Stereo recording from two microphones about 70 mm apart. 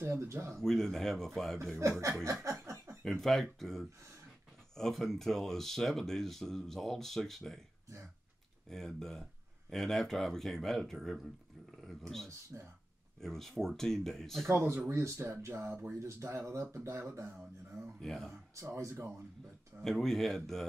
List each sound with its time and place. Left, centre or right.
0.0 s speech: right
0.6 s speech: centre
1.8 s speech: right
2.4 s chuckle: right
3.0 s speech: centre
8.6 s speech: centre
12.5 s speech: right
13.2 s speech: centre
14.4 s speech: right
17.9 s speech: centre
18.8 s speech: right
19.8 s speech: centre